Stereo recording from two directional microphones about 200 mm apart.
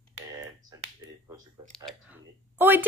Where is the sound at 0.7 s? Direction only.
20° right (ahead or behind).